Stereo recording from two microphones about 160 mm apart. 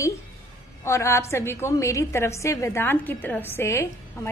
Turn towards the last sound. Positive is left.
turn(degrees=15)  # may be behind; listen again after turning